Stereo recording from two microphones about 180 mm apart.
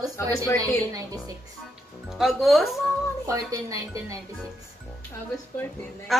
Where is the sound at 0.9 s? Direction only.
20° right (ahead or behind).